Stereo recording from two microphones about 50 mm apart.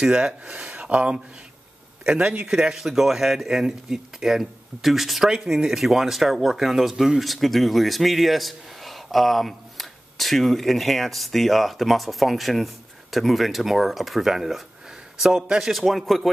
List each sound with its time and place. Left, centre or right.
0.0 s speech: centre
15.7 s speech: centre